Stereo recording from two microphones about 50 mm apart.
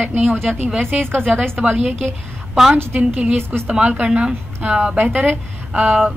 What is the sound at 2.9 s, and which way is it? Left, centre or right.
Speech, right.